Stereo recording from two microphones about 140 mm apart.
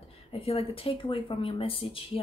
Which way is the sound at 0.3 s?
45° left (ahead or behind).